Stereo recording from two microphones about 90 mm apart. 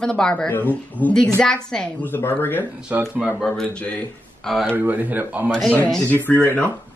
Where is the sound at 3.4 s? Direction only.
10° left (ahead or behind).